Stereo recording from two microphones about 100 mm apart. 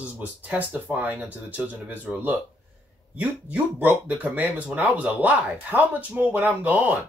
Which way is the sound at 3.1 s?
15° right (ahead or behind).